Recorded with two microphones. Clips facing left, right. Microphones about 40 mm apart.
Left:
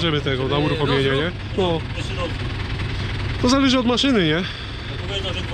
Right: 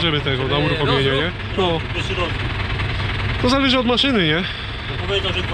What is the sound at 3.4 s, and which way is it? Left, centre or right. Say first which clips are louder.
Speech: even; centre.